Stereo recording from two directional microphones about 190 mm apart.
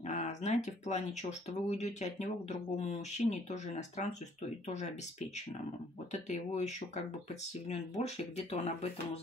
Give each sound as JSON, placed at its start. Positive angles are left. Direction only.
{"t": 0.1, "sound": "speech", "side_deg": 40}
{"t": 6.1, "sound": "speech", "side_deg": 35}
{"t": 8.0, "sound": "speech", "side_deg": 35}